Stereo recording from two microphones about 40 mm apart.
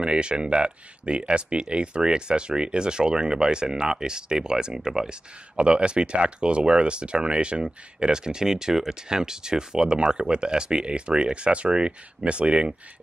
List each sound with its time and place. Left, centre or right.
0.0 s speech: right